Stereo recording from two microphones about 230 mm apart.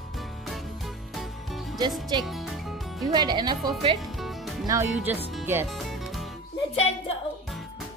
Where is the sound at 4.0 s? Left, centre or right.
Centre.